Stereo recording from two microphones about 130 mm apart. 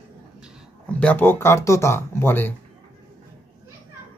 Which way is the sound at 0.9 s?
10° left (ahead or behind).